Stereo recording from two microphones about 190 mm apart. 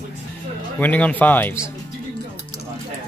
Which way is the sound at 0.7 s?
10° left (ahead or behind).